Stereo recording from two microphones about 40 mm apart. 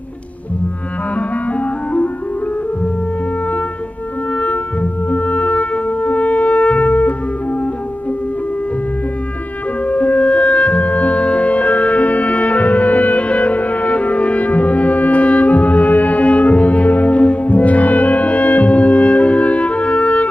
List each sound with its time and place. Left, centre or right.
1.1 s music: left
5.1 s music: left
9.8 s music: left